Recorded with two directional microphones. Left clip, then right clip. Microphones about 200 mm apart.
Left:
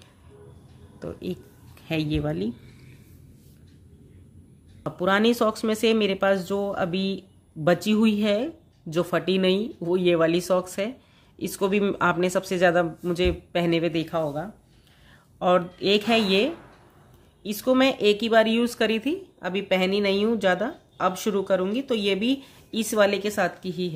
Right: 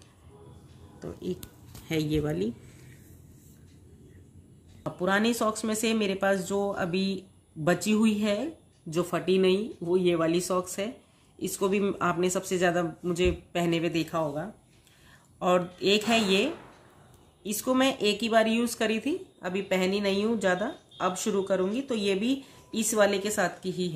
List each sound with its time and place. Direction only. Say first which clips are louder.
0.9 s speech: left 2 dB; 35° left (ahead or behind)
4.8 s speech: left 5 dB; 35° left (ahead or behind)